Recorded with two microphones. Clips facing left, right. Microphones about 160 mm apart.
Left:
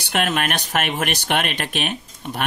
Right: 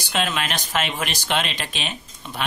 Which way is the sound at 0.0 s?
60° left (ahead or behind).